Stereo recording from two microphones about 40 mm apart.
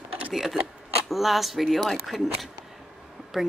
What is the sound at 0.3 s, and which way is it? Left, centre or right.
Speech, centre.